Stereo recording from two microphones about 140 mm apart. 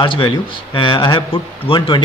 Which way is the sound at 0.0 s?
35° left (ahead or behind).